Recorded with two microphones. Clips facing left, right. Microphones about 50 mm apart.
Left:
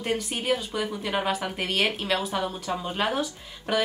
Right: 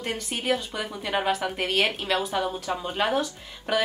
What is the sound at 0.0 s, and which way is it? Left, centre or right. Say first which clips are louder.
A woman's voice: left 2 dB; centre.